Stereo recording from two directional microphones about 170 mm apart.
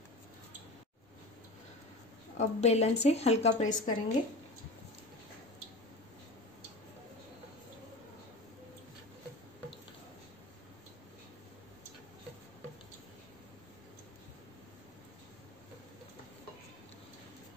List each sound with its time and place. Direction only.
2.3 s speech: 40° left (ahead or behind)